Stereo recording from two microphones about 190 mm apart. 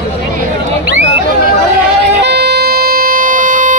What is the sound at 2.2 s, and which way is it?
Vehicle, 60° right (ahead or behind).